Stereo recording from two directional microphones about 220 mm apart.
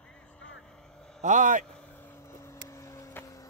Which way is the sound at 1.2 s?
35° right (ahead or behind).